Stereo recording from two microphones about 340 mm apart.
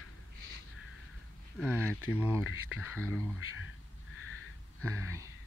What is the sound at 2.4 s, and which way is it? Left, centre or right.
Speech, left.